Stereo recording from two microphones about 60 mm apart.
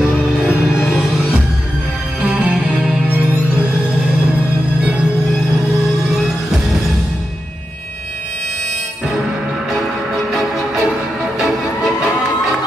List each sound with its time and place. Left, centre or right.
2.2 s music: centre
9.7 s music: centre